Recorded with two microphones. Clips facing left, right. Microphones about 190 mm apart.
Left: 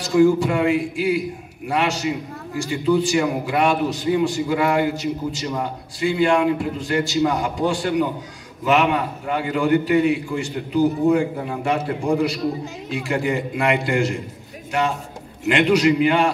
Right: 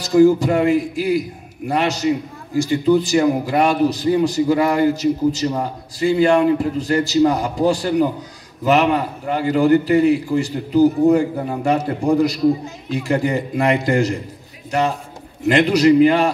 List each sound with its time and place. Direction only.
0.0 s a man's voice: 40° right (ahead or behind)
15.4 s a man's voice: 40° right (ahead or behind)